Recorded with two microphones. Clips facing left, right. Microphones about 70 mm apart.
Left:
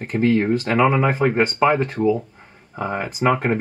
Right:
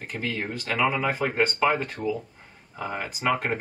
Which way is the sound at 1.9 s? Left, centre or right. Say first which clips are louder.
Left 10 dB; left.